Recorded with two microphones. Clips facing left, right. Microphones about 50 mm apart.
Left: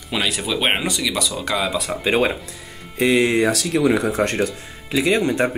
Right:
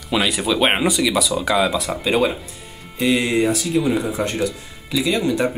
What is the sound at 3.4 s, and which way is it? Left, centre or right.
Speech, left.